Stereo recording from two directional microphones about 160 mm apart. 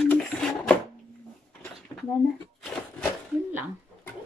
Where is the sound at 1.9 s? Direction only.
25° left (ahead or behind).